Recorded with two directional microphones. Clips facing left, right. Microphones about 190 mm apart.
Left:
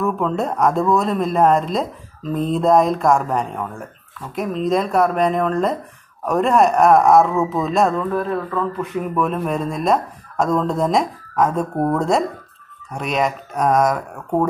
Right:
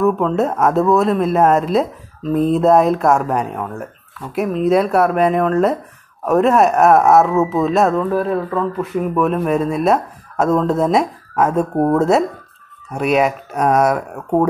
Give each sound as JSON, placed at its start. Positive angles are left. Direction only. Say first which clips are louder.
{"t": 0.0, "sound": "speech", "louder": "right 5 dB", "side_deg": 0}
{"t": 11.7, "sound": "speech", "louder": "right 4 dB", "side_deg": -25}
{"t": 12.0, "sound": "speech", "louder": "right 4 dB", "side_deg": -5}